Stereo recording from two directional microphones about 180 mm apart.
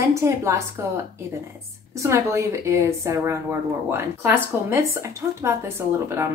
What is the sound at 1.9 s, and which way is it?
Speech, 15° right (ahead or behind).